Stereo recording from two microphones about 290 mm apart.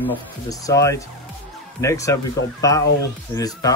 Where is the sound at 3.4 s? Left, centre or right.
Centre.